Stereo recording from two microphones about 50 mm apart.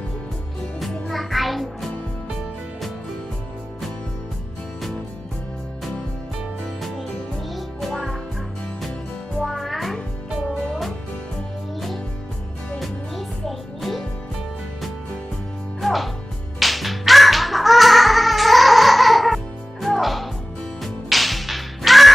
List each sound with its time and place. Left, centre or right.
1.0 s music: centre
6.6 s music: centre
9.4 s music: centre
12.7 s music: centre
15.8 s music: centre